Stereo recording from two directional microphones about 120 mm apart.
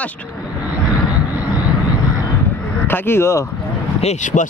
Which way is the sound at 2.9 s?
20° left (ahead or behind).